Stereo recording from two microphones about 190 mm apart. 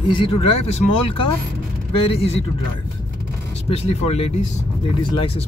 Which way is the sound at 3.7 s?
30° left (ahead or behind).